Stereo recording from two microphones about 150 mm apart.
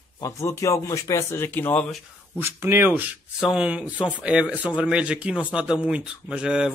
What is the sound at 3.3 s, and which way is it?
Speech, 5° right (ahead or behind).